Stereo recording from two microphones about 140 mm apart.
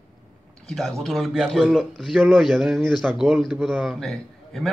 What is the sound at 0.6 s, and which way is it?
A man's voice, centre (ahead or behind).